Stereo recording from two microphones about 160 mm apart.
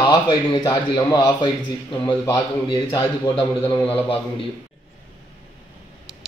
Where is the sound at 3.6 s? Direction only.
10° left (ahead or behind).